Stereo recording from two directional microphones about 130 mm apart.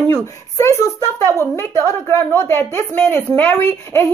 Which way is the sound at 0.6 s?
20° left (ahead or behind).